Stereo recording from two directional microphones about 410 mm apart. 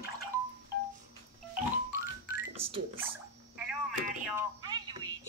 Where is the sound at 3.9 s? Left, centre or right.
Centre.